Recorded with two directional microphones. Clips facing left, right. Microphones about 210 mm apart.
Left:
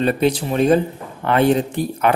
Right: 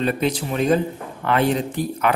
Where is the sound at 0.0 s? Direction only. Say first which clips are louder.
Left 4 dB; 30° left (ahead or behind).